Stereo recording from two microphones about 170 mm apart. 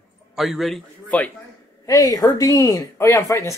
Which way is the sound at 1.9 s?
20° left (ahead or behind).